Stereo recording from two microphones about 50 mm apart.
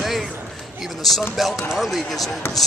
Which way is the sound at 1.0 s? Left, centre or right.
Centre.